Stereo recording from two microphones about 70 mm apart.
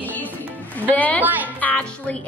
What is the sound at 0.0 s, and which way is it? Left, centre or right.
Music, left.